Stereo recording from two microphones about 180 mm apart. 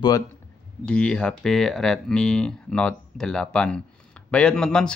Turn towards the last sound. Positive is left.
turn(degrees=5)  # may be behind; listen again after turning